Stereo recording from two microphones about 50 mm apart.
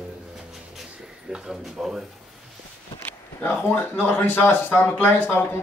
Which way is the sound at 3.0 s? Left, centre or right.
Left.